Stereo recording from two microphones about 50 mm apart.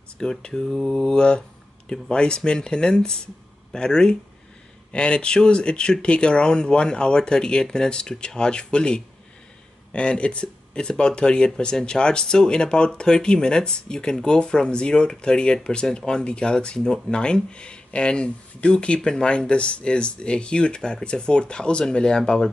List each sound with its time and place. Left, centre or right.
0.2 s speech: centre